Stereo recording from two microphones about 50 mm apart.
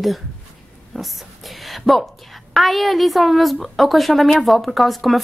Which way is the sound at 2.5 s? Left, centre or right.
Centre.